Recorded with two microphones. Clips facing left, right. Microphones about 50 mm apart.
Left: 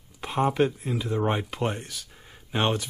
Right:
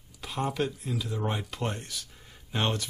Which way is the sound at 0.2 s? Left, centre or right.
Left.